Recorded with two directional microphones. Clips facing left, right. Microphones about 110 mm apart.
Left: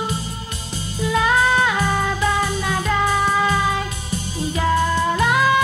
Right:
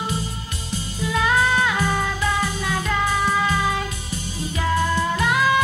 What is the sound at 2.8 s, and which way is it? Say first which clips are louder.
Music: left 3 dB; 25° left (ahead or behind).